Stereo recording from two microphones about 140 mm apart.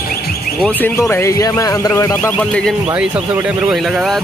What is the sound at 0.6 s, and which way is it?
Speech, 15° left (ahead or behind).